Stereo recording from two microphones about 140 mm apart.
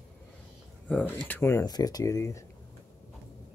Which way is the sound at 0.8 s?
10° left (ahead or behind).